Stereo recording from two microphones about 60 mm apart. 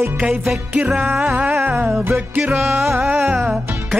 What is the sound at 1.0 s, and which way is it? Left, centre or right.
Music, right.